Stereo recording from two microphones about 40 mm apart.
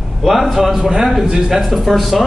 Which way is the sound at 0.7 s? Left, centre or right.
Centre.